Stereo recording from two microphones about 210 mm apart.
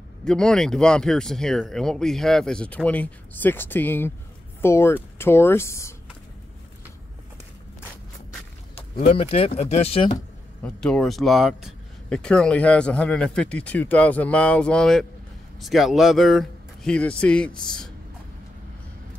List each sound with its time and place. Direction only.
0.2 s speech: 5° left (ahead or behind)
8.7 s speech: 25° left (ahead or behind)
10.6 s speech: 5° left (ahead or behind)